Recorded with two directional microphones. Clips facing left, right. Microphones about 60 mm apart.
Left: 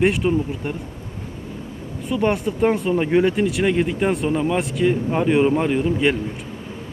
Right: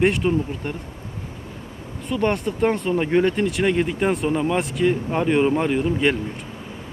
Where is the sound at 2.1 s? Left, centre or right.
Centre.